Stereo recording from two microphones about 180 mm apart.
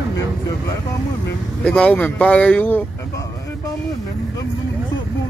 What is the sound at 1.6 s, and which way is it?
Speech, 5° left (ahead or behind).